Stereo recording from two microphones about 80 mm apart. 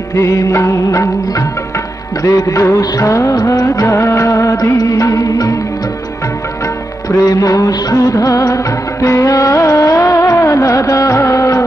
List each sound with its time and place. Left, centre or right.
0.1 s music: left
2.2 s music of bollywood: left
7.1 s music of bollywood: left
9.0 s music: left